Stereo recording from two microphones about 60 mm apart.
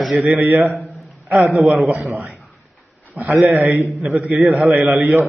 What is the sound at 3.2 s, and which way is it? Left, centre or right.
Speech, right.